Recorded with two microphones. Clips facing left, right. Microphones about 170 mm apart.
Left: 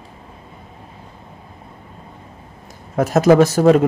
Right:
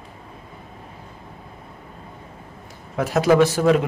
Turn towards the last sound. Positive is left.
turn(degrees=40)  # may be behind; listen again after turning